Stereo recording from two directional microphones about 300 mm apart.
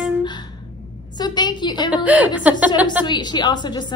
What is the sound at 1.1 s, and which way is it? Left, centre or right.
Speech, centre.